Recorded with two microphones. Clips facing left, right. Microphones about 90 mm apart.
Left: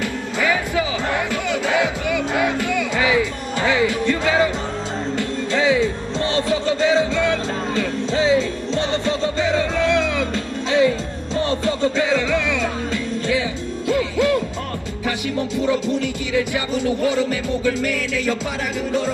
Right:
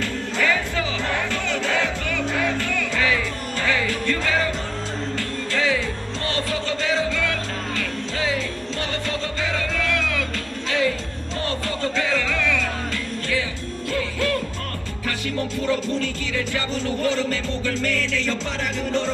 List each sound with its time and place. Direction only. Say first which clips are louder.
0.0 s music: left 2 dB; 10° left (ahead or behind)